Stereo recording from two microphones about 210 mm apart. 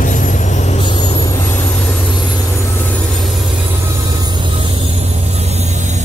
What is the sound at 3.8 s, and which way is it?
Vehicle, 20° right (ahead or behind).